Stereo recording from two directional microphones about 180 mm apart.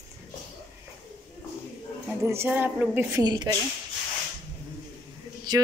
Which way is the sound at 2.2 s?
10° right (ahead or behind).